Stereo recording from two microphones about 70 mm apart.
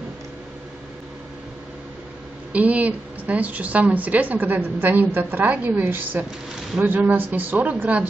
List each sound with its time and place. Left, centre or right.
2.5 s a woman's voice: right